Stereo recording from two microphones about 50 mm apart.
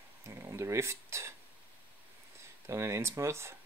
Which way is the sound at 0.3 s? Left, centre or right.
Right.